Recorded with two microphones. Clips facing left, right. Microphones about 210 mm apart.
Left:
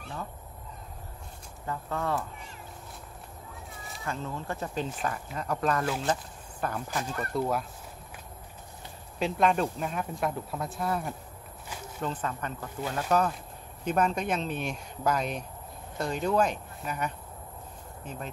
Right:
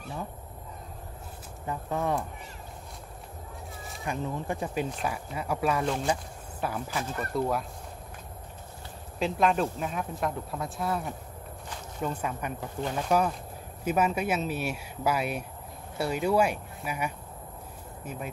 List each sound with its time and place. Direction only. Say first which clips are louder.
1.7 s speech: right 2 dB; 15° right (ahead or behind)
4.0 s speech: right 3 dB; 15° right (ahead or behind); by 7.6 s centre (ahead or behind)
9.2 s speech: even; centre (ahead or behind)